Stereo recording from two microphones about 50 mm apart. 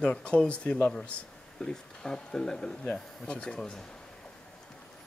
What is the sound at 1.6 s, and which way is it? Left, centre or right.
Speech, centre.